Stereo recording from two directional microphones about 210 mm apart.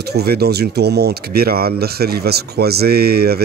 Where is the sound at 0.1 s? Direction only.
50° right (ahead or behind).